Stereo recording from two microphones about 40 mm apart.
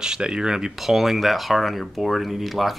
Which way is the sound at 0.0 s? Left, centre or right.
Centre.